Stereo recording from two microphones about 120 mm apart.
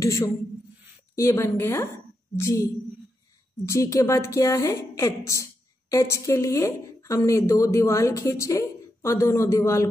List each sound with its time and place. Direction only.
0.0 s a woman's voice: 25° left (ahead or behind)